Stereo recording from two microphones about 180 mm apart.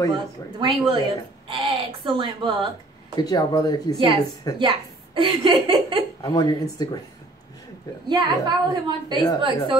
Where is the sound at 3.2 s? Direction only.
20° left (ahead or behind).